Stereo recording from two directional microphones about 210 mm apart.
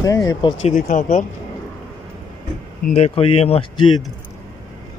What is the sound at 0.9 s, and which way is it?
Speech, 35° left (ahead or behind).